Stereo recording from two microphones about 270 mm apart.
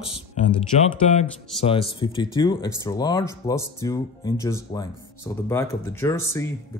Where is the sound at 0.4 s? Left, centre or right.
Left.